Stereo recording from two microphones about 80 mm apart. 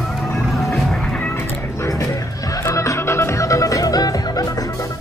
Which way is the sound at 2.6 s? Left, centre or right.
Left.